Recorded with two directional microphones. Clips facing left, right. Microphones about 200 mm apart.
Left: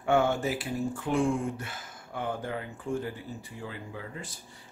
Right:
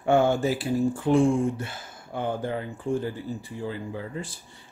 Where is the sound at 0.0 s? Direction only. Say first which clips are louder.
Right 4 dB; 30° right (ahead or behind).